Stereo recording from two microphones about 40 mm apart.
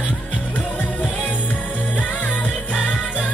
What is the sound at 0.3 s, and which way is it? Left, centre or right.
Music, left.